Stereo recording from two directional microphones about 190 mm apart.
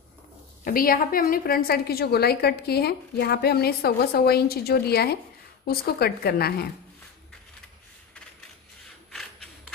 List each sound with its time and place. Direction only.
0.7 s a woman's voice: 50° left (ahead or behind)